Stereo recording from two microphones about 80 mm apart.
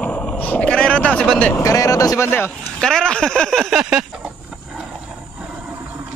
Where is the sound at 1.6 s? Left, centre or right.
Left.